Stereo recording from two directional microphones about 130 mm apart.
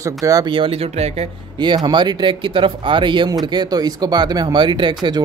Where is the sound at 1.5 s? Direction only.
35° right (ahead or behind).